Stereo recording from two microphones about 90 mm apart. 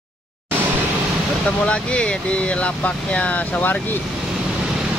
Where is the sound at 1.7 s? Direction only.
10° left (ahead or behind).